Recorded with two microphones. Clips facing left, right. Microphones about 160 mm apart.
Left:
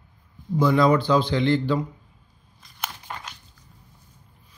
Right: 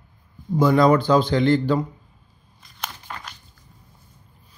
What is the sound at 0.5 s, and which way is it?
Speech, 45° right (ahead or behind).